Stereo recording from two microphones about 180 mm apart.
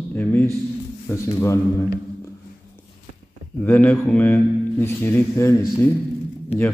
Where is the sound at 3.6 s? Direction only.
10° left (ahead or behind).